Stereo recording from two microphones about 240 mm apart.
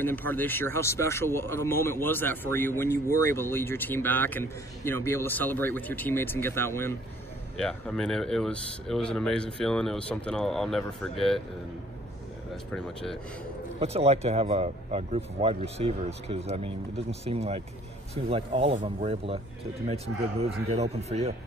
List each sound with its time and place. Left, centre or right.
0.0 s speech: centre
12.7 s speech: centre
13.7 s speech: right